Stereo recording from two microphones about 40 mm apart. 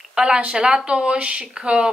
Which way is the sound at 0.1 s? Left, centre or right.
Right.